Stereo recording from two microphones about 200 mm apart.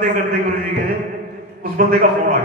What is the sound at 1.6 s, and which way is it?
Speech, 50° right (ahead or behind).